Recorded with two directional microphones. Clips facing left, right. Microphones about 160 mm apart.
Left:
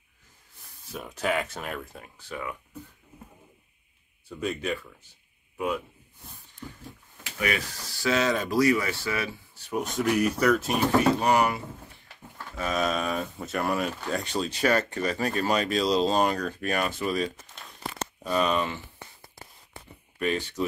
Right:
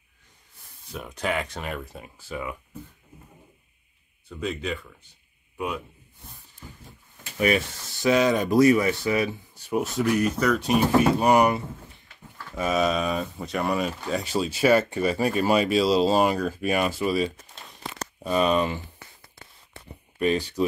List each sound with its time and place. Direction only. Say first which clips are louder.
0.9 s speech: even; 5° left (ahead or behind)
4.3 s speech: even; 5° left (ahead or behind)
7.3 s speech: right 6 dB; 25° right (ahead or behind)
8.1 s speech: right 5 dB; 15° right (ahead or behind)
10.1 s speech: left 2 dB; 10° left (ahead or behind)
10.9 s speech: right 2 dB; 10° right (ahead or behind)
12.5 s speech: right 4 dB; 5° right (ahead or behind)
20.2 s speech: right 4 dB; 30° right (ahead or behind)